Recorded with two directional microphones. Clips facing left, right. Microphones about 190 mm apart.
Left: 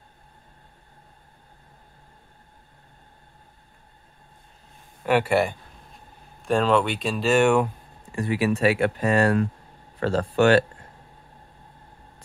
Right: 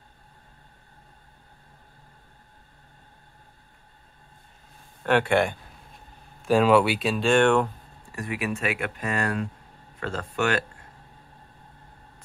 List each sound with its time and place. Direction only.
5.0 s speech: 5° left (ahead or behind)
6.4 s speech: 5° right (ahead or behind)
8.1 s speech: 30° left (ahead or behind)